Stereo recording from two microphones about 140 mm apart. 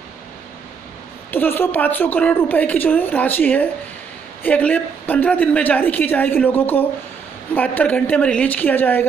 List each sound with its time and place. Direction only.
1.3 s a woman's voice: 15° left (ahead or behind)